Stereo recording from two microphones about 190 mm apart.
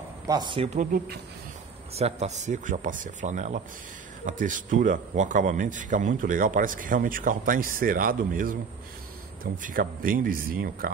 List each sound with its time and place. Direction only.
0.3 s speech: 25° right (ahead or behind)
0.7 s speech: 50° right (ahead or behind)
2.0 s a man's voice: 35° right (ahead or behind)